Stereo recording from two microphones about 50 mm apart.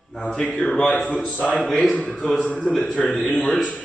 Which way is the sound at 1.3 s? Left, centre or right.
Left.